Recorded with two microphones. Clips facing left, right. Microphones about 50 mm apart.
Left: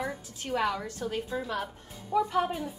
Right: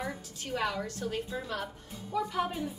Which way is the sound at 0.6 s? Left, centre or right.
Centre.